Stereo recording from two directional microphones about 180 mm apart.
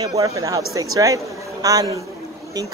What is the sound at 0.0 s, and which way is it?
Speech, 20° right (ahead or behind).